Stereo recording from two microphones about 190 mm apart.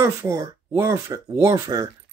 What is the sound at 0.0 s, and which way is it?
Speech, 15° right (ahead or behind).